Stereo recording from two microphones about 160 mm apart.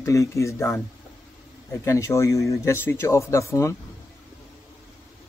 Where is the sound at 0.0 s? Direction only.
20° left (ahead or behind).